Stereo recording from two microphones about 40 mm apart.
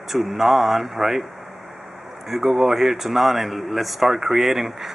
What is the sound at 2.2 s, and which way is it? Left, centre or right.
A man's voice, centre.